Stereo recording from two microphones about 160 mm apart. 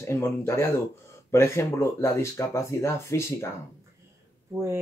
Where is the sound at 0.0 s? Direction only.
15° left (ahead or behind).